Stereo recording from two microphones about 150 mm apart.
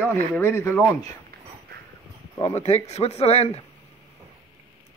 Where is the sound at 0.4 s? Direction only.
15° left (ahead or behind).